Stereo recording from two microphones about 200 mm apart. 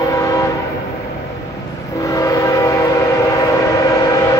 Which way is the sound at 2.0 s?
15° left (ahead or behind).